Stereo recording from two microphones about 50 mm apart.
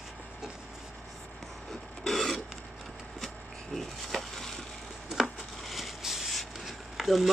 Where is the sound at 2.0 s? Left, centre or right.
Centre.